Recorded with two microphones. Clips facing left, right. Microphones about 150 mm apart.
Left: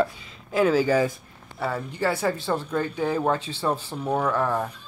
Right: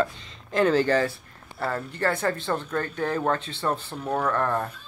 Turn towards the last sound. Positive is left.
turn(degrees=5)  # may be behind; listen again after turning